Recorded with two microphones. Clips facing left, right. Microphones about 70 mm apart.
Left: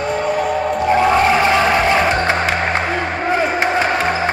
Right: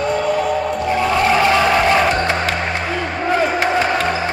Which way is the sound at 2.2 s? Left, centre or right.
Left.